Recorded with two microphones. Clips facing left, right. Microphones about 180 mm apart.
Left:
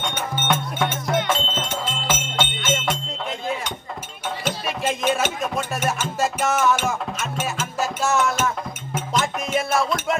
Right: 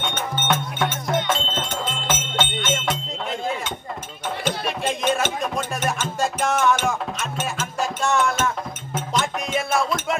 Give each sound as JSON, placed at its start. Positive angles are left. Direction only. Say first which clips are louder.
{"t": 0.1, "sound": "music", "louder": "even", "side_deg": 10}